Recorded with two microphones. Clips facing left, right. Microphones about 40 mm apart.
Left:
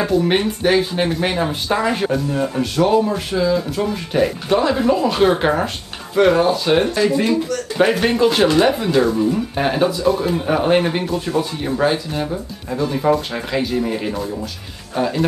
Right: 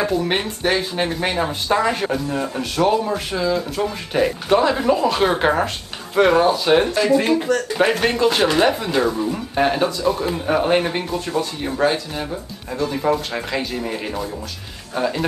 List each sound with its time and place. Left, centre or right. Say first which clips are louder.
0.0 s speech: left 3 dB; centre
7.2 s speech: right 1 dB; right
7.7 s speech: left 5 dB; centre